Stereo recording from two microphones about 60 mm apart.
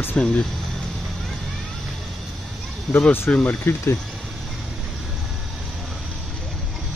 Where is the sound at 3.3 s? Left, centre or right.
Centre.